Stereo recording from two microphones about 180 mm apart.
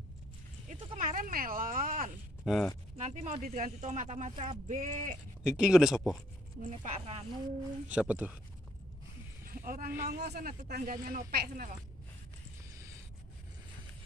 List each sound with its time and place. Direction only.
0.7 s speech: 40° right (ahead or behind)
2.4 s speech: centre (ahead or behind)
3.0 s speech: 40° right (ahead or behind)
5.4 s speech: 5° right (ahead or behind)
6.7 s speech: 40° right (ahead or behind)
7.9 s speech: 5° right (ahead or behind)
9.5 s speech: 50° right (ahead or behind)
10.0 s speech: 65° right (ahead or behind)
10.6 s speech: 50° right (ahead or behind)